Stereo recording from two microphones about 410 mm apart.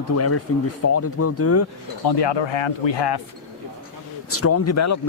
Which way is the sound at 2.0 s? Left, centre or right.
Left.